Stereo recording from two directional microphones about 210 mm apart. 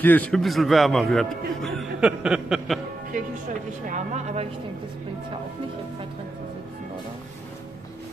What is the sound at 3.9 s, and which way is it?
Speech, 35° right (ahead or behind).